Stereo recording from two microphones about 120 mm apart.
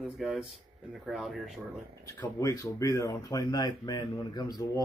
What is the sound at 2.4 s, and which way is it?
Speech, 25° left (ahead or behind).